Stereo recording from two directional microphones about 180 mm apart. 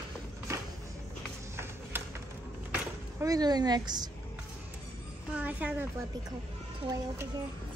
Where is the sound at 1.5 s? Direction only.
15° right (ahead or behind).